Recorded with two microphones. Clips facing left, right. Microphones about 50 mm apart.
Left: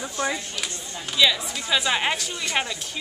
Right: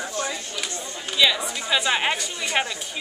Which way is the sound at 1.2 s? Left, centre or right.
Centre.